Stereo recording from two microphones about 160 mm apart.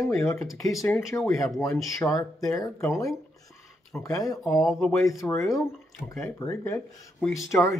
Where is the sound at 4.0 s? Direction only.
20° left (ahead or behind).